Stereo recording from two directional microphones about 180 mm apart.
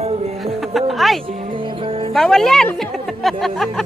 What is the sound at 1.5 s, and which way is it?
Music, 30° right (ahead or behind).